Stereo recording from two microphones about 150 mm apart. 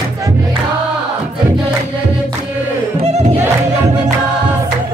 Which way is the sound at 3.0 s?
45° right (ahead or behind).